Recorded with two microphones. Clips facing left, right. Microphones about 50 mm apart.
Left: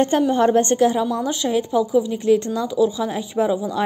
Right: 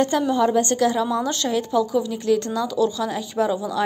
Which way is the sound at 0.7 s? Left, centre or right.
Left.